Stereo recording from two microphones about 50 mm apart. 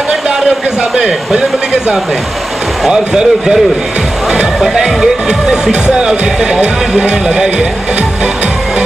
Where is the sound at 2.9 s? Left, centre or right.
Centre.